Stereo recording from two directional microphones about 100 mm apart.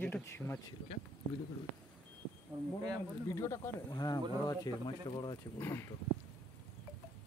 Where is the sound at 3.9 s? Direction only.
45° left (ahead or behind).